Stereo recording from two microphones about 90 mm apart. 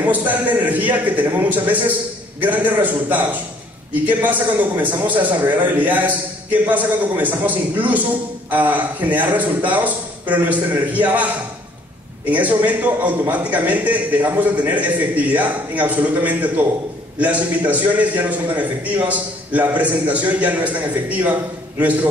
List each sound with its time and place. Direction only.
0.0 s a man's voice: 20° right (ahead or behind)
12.3 s a man's voice: 15° right (ahead or behind)